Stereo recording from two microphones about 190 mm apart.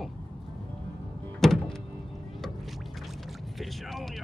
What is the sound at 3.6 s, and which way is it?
Vehicle, centre (ahead or behind).